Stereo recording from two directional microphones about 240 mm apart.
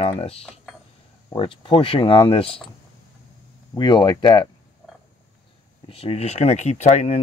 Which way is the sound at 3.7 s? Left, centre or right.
Centre.